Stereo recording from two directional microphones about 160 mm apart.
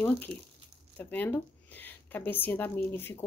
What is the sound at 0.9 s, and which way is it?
Speech, 10° left (ahead or behind).